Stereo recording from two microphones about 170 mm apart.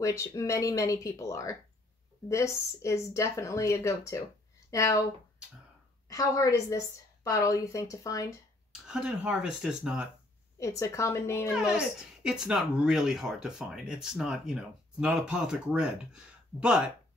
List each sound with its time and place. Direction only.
0.0 s speech: 20° left (ahead or behind)
6.0 s speech: 20° left (ahead or behind)
8.8 s speech: 5° right (ahead or behind)
10.6 s speech: 20° left (ahead or behind)
12.2 s speech: 5° right (ahead or behind)